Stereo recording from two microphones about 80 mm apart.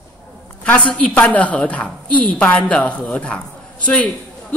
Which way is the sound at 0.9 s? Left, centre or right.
Centre.